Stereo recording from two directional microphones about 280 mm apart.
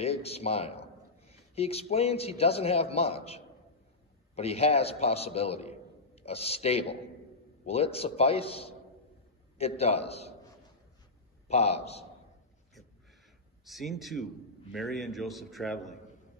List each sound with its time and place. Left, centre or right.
0.0 s a man's voice: left
11.4 s a man's voice: left
13.7 s a man's voice: centre